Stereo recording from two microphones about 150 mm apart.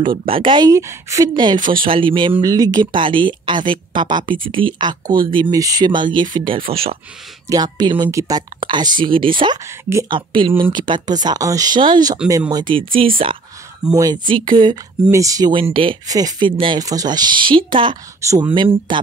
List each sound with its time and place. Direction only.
0.3 s speech: 35° right (ahead or behind)
7.4 s speech: 25° right (ahead or behind)
15.0 s speech: 20° right (ahead or behind)